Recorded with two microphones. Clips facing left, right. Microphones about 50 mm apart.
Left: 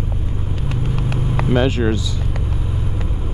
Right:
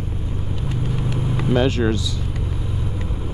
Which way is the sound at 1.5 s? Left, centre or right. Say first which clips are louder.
Left 1 dB; centre.